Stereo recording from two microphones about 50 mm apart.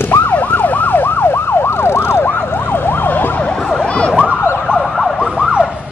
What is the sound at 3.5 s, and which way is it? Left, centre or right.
Emergency vehicle, centre.